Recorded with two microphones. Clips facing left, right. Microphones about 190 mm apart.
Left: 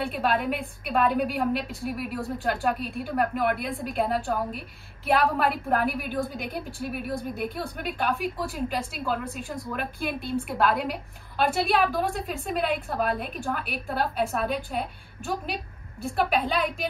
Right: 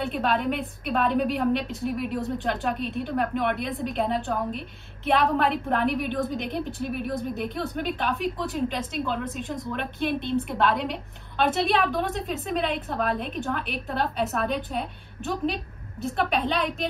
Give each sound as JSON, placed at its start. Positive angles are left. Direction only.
{"t": 0.0, "sound": "speech", "side_deg": 5}